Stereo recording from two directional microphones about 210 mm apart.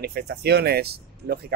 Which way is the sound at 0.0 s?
50° right (ahead or behind).